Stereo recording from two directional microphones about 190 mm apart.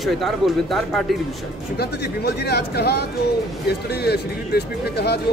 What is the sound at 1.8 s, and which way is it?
Speech, 55° left (ahead or behind).